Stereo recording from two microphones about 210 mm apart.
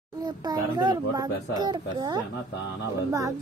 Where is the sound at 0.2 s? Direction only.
20° right (ahead or behind).